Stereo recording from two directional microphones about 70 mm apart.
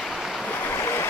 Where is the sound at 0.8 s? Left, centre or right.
Left.